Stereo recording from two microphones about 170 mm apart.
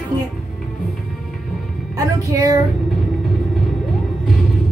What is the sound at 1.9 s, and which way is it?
Speech, 20° right (ahead or behind).